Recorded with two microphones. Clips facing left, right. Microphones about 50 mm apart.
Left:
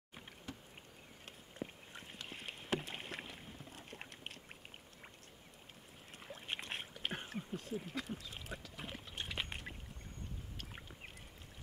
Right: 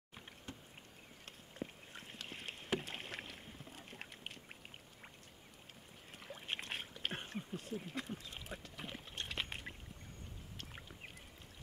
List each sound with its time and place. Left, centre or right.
1.6 s rowboat: centre
6.1 s boat: centre
7.0 s a sound: centre
8.7 s boat: centre
10.6 s rowboat: centre